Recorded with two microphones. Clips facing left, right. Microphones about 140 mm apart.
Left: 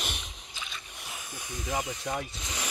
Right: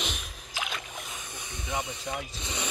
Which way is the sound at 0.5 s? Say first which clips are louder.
Right 8 dB; 90° right.